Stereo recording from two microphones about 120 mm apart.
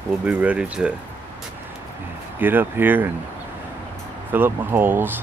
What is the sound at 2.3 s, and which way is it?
Speech, 15° right (ahead or behind).